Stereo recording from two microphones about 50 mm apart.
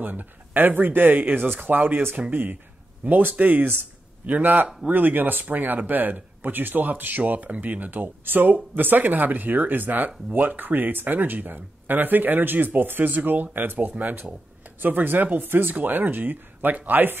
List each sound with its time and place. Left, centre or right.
0.0 s speech: right